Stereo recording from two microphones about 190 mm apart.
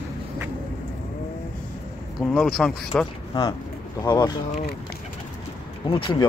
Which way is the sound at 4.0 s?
25° left (ahead or behind).